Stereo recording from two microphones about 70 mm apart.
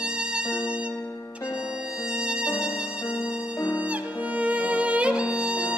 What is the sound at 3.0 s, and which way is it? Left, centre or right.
Violin, left.